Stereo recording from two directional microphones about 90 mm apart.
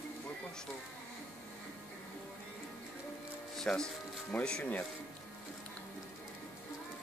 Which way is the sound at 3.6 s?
5° left (ahead or behind).